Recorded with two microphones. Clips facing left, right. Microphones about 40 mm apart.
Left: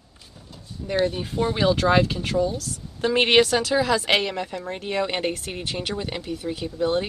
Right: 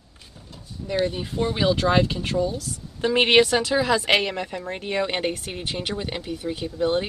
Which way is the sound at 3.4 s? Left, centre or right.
Centre.